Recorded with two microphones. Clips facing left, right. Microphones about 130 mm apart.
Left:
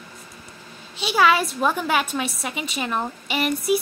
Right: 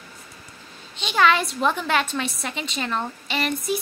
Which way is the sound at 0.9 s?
10° left (ahead or behind).